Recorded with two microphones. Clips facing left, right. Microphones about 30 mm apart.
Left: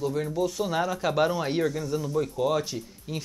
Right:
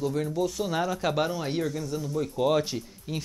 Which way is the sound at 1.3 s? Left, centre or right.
Centre.